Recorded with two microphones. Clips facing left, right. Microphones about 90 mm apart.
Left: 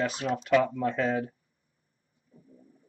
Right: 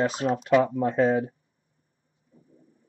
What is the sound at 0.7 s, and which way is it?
Speech, 40° right (ahead or behind).